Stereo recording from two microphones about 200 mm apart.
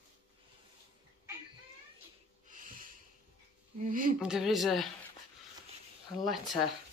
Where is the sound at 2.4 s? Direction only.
40° right (ahead or behind).